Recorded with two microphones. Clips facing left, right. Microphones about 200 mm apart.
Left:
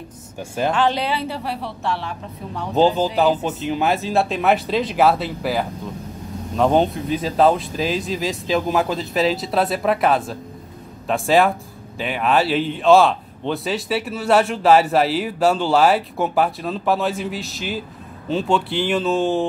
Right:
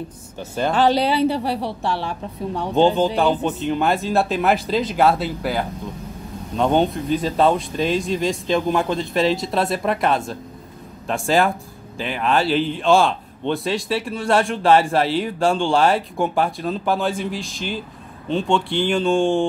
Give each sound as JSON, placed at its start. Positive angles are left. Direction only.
{"t": 0.4, "sound": "a man's voice", "side_deg": 5}
{"t": 0.7, "sound": "a woman's voice", "side_deg": -35}
{"t": 2.7, "sound": "a man's voice", "side_deg": 0}